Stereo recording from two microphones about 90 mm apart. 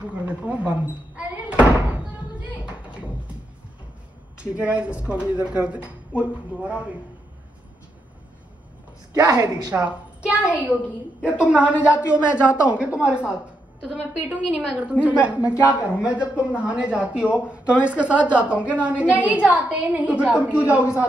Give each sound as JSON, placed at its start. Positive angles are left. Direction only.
{"t": 0.0, "sound": "speech", "side_deg": -15}
{"t": 2.6, "sound": "music", "side_deg": -10}
{"t": 4.4, "sound": "speech", "side_deg": -15}
{"t": 9.1, "sound": "a woman's voice", "side_deg": -40}
{"t": 9.8, "sound": "speech", "side_deg": -10}